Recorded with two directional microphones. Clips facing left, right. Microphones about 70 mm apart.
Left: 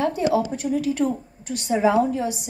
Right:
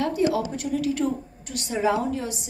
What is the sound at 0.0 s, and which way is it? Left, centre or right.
A woman's voice, left.